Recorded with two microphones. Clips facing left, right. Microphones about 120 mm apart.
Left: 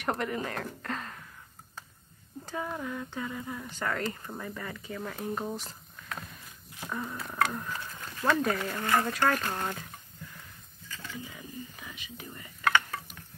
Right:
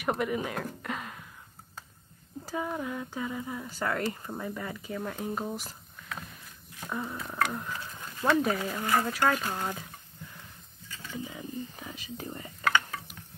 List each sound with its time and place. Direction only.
0.0 s speech: 10° right (ahead or behind)
2.4 s speech: 10° right (ahead or behind)
10.9 s a sound: 15° right (ahead or behind)
11.9 s speech: 35° right (ahead or behind)